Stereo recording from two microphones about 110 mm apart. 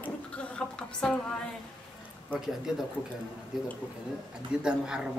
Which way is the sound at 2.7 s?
5° right (ahead or behind).